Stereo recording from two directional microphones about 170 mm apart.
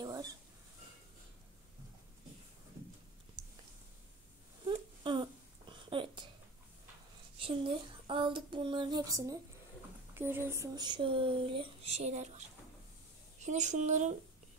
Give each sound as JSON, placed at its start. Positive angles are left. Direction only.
{"t": 0.0, "sound": "a sound", "side_deg": -20}
{"t": 4.6, "sound": "babbling", "side_deg": -25}
{"t": 7.3, "sound": "speech", "side_deg": -30}